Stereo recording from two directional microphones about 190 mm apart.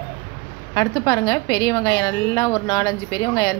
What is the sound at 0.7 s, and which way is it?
A woman's voice, 20° left (ahead or behind).